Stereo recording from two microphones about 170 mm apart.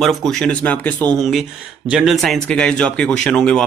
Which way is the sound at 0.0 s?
Centre (ahead or behind).